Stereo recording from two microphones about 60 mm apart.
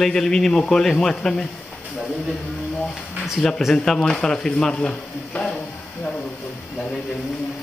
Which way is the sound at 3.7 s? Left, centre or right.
Centre.